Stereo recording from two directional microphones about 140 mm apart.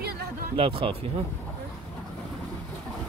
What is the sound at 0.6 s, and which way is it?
Speech, 40° right (ahead or behind).